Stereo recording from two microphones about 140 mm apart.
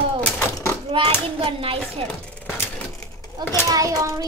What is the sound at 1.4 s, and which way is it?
Speech, 40° right (ahead or behind).